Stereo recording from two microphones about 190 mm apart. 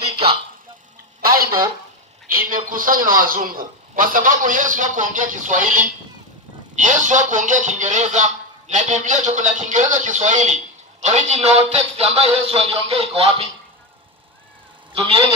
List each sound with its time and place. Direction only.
2.2 s a man's voice: 45° right (ahead or behind); by 13.5 s 30° right (ahead or behind)
14.9 s a man's voice: 30° right (ahead or behind)